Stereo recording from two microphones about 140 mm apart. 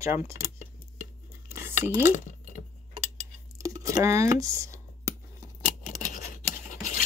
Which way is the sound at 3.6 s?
25° right (ahead or behind).